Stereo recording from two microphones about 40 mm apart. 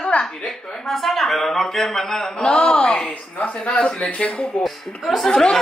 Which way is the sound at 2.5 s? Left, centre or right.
Left.